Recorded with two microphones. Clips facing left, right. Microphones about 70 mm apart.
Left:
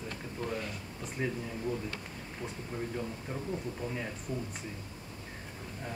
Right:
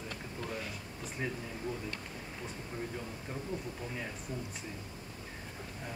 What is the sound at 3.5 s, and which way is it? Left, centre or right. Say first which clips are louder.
Speech: even; left.